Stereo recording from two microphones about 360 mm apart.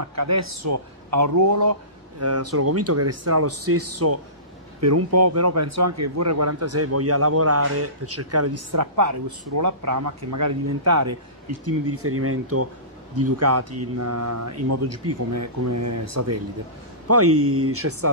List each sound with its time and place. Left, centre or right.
0.0 s speech: right